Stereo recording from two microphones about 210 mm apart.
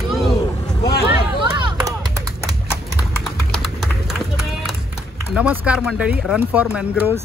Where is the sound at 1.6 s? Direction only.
20° right (ahead or behind).